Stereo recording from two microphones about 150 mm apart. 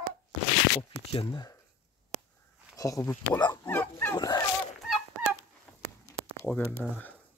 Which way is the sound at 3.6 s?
15° left (ahead or behind).